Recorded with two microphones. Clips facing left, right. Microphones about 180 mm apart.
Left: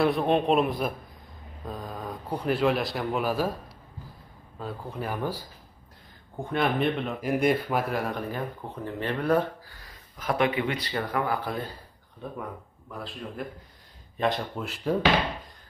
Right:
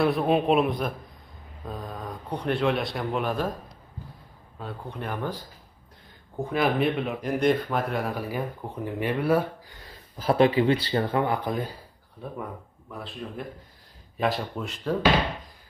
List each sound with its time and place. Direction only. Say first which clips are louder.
0.0 s speech: right 1 dB; centre (ahead or behind)
6.4 s speech: right 2 dB; centre (ahead or behind)
9.8 s speech: right 4 dB; 30° right (ahead or behind)
12.9 s speech: right 1 dB; centre (ahead or behind)